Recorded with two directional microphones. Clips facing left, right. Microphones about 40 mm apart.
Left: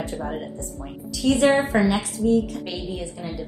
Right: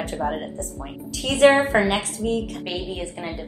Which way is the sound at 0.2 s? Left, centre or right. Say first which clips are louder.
Right 4 dB; right.